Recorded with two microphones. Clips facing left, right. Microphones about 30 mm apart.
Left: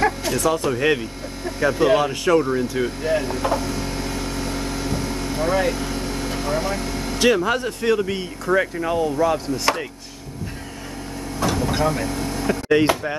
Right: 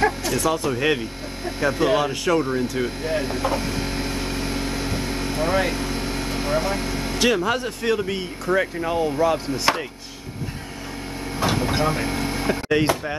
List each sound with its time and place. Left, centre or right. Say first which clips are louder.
0.2 s speech: left 2 dB; centre
3.2 s speech: left 1 dB; centre
3.5 s vehicle: even; right
7.2 s speech: left 2 dB; centre
11.3 s a sound: even; right
11.7 s speech: left 1 dB; right
12.6 s speech: left 4 dB; centre